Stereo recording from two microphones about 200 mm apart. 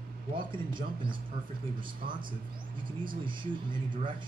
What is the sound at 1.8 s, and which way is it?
Speech, 25° right (ahead or behind).